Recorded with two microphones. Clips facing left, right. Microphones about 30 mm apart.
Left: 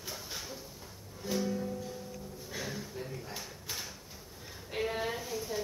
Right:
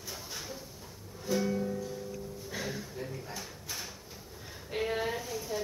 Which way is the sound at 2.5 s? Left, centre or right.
Centre.